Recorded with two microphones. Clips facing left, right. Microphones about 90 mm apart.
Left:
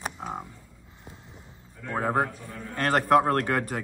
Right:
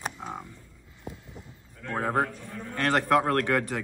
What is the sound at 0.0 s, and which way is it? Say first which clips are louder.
Music: left 2 dB; 10° left (ahead or behind).